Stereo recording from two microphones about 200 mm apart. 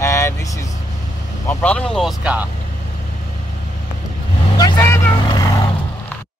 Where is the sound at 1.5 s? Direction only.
5° left (ahead or behind).